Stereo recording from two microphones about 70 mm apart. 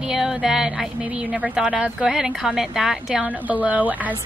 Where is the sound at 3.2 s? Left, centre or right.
Right.